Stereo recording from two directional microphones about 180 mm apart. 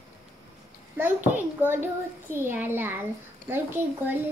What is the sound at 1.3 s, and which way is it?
A woman's voice, 10° right (ahead or behind).